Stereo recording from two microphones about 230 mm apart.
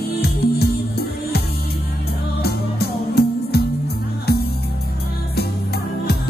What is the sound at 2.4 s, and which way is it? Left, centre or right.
Music, left.